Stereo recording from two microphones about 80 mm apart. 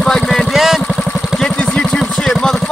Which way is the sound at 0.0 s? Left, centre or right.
Centre.